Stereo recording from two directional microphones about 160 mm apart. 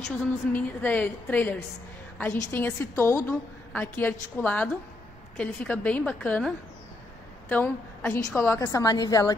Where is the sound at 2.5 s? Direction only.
15° left (ahead or behind).